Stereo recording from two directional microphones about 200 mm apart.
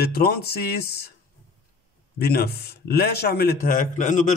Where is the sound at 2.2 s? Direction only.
50° left (ahead or behind).